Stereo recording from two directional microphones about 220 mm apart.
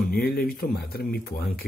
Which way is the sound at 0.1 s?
45° left (ahead or behind).